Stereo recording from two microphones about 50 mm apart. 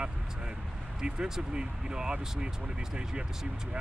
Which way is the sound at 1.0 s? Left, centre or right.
Centre.